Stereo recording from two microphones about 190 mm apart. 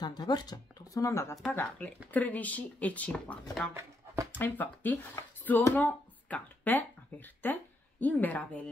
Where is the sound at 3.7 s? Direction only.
15° right (ahead or behind).